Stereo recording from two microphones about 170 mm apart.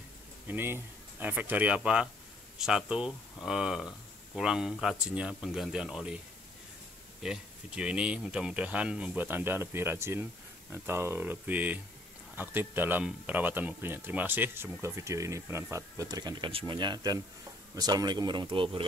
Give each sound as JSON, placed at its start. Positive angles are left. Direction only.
{"t": 0.5, "sound": "speech", "side_deg": -15}
{"t": 7.2, "sound": "speech", "side_deg": -5}